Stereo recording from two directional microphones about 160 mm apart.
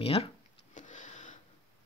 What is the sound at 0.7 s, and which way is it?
Vehicle, 50° left (ahead or behind).